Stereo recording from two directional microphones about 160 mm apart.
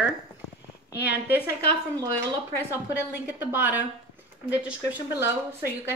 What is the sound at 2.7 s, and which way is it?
A woman's voice, 10° right (ahead or behind).